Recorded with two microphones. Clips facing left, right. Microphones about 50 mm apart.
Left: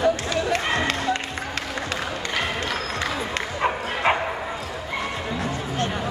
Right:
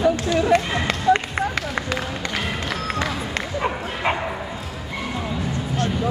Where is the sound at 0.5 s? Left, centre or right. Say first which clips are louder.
Right 9 dB; right.